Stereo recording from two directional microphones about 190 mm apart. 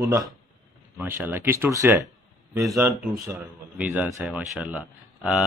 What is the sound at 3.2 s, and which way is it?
Speech, 10° right (ahead or behind).